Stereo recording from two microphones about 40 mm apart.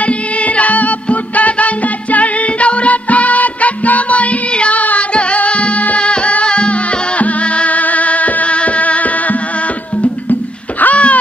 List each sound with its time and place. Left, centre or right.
0.6 s music: left
10.8 s wail: left